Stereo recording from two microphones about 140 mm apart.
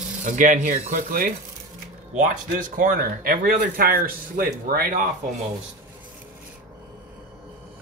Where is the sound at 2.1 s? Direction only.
70° right (ahead or behind); by 5.0 s 85° right.